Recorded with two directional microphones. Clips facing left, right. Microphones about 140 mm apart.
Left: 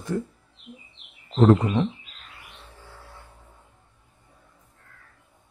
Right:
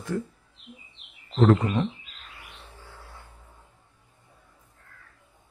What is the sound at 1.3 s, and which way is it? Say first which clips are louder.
Speech: left 3 dB; 25° left (ahead or behind).